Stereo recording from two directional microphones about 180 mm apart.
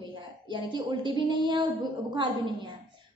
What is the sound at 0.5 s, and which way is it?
A woman's voice, 25° right (ahead or behind).